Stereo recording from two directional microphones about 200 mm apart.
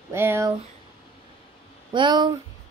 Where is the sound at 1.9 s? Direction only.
20° right (ahead or behind).